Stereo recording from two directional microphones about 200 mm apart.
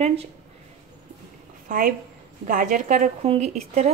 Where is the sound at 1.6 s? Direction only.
45° right (ahead or behind).